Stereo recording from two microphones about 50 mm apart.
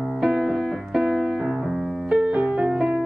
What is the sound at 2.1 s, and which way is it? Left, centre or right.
Music, right.